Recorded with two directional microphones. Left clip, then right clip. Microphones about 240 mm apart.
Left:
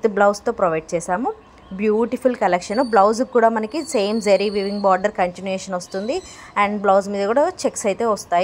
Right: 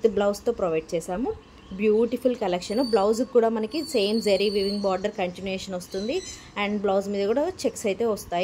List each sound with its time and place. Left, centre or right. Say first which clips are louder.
0.0 s speech: left 6 dB; centre